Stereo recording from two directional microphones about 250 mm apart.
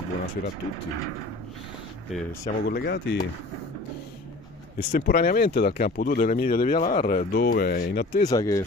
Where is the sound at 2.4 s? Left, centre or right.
Left.